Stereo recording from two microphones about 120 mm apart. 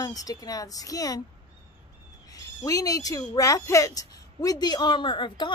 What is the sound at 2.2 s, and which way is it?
Speech, 30° left (ahead or behind).